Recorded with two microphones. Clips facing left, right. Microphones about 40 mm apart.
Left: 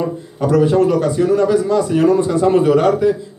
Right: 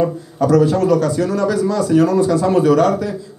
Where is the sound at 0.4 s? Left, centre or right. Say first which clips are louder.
Even; left.